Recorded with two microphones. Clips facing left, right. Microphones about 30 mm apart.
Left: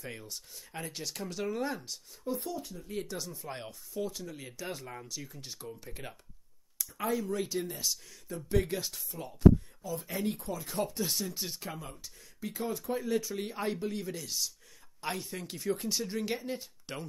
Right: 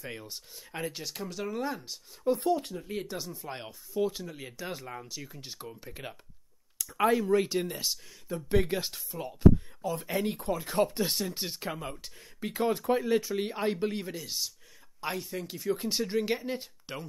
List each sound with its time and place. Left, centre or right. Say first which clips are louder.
0.2 s speech: right 2 dB; right; by 1.9 s centre
2.3 s speech: right 8 dB; right
2.9 s speech: even; centre
5.9 s speech: right 3 dB; centre
6.8 s speech: right 7 dB; right
7.2 s speech: right 7 dB; right
9.8 s speech: right 5 dB; right
10.0 s speech: right 2 dB; right
10.4 s speech: right 6 dB; right
12.0 s speech: right 3 dB; right
13.0 s speech: right 4 dB; right
15.0 s speech: right 3 dB; centre
15.8 s speech: right 4 dB; right
16.8 s speech: right 1 dB; centre